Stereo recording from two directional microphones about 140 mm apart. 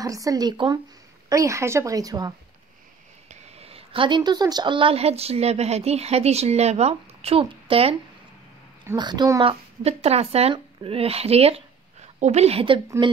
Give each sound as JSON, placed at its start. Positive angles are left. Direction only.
{"t": 0.0, "sound": "speech", "side_deg": -25}
{"t": 3.3, "sound": "a woman's voice", "side_deg": -45}
{"t": 8.9, "sound": "a child's voice", "side_deg": -30}
{"t": 9.4, "sound": "speech", "side_deg": -45}